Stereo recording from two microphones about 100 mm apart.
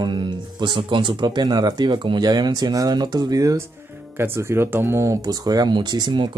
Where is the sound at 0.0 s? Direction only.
50° right (ahead or behind).